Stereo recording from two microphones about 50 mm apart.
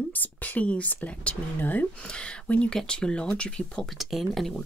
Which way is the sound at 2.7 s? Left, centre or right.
Centre.